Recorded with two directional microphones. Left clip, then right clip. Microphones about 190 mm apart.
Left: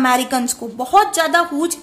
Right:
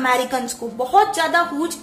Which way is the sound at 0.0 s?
45° left (ahead or behind).